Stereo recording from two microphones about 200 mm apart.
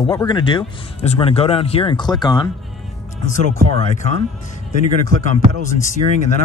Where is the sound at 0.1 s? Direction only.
20° left (ahead or behind).